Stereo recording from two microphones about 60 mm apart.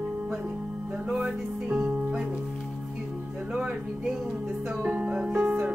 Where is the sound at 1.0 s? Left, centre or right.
Centre.